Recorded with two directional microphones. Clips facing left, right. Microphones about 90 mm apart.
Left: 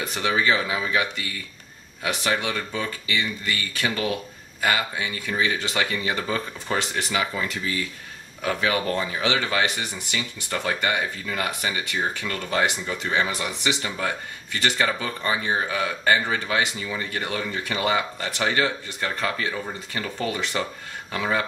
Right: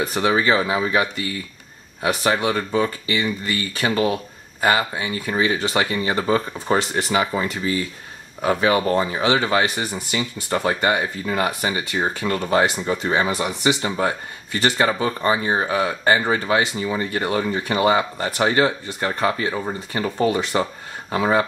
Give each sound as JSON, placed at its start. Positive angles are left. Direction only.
{"t": 0.0, "sound": "speech", "side_deg": -30}